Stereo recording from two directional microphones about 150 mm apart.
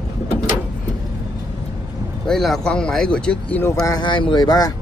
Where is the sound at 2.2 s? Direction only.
Centre (ahead or behind).